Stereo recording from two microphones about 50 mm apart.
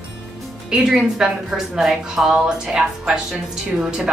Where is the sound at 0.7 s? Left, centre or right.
Centre.